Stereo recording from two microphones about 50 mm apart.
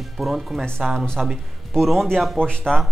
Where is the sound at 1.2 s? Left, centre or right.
Centre.